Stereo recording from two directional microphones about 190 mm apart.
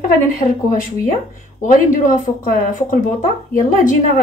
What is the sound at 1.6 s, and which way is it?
A woman's voice, 45° left (ahead or behind).